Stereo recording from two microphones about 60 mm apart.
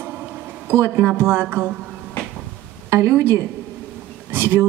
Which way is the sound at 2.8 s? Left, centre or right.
Right.